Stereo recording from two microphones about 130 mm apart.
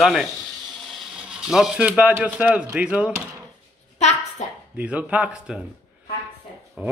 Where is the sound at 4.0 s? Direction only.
60° left (ahead or behind).